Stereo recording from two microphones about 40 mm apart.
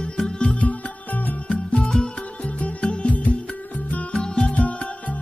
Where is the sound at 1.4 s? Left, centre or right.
Left.